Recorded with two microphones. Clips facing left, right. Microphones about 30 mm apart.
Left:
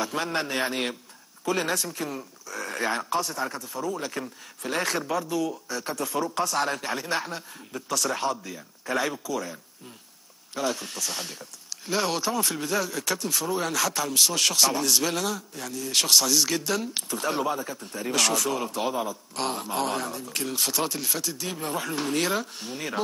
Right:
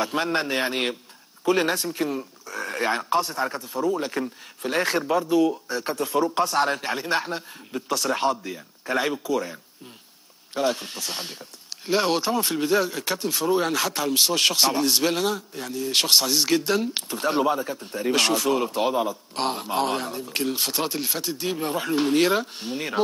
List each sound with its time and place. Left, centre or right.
0.1 s speech: right
2.5 s a sound: right
3.1 s speech: right
10.5 s speech: right